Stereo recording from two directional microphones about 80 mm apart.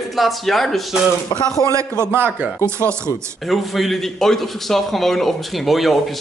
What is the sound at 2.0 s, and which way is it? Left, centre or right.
Speech, right.